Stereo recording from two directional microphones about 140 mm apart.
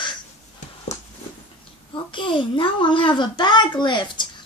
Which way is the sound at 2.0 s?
35° left (ahead or behind).